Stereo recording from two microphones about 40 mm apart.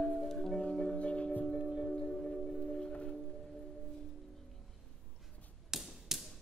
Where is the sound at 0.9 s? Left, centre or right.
Left.